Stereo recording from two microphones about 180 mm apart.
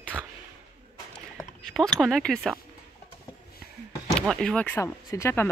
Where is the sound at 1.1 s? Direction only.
5° left (ahead or behind).